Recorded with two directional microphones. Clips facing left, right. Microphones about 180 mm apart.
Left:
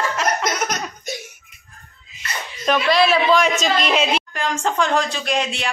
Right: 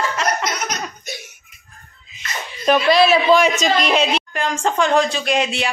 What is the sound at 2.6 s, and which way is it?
Speech, 20° right (ahead or behind).